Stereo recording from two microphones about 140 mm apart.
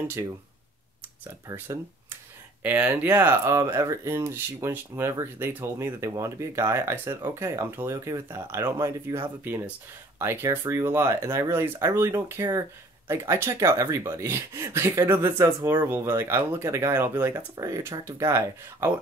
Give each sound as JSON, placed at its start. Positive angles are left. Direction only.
{"t": 0.2, "sound": "speech", "side_deg": -20}
{"t": 2.6, "sound": "speech", "side_deg": -10}